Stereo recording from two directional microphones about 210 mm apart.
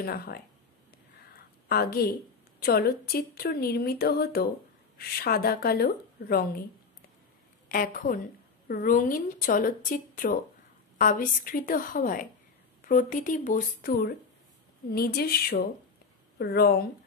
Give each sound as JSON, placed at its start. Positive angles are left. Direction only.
{"t": 0.0, "sound": "speech", "side_deg": 45}
{"t": 1.7, "sound": "speech", "side_deg": 45}
{"t": 7.6, "sound": "a woman's voice", "side_deg": 40}